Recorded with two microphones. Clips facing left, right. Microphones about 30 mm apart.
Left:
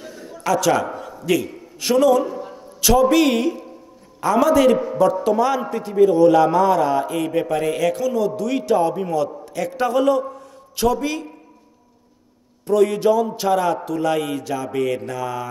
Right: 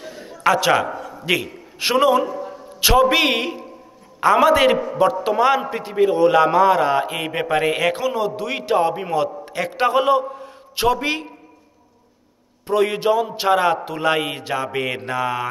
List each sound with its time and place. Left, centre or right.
0.0 s a sound: right
2.8 s a man's voice: right
12.6 s a man's voice: right